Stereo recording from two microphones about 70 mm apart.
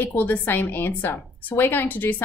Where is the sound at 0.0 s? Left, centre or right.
Left.